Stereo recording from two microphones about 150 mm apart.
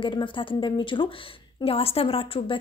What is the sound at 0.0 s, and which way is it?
A woman's voice, 35° left (ahead or behind).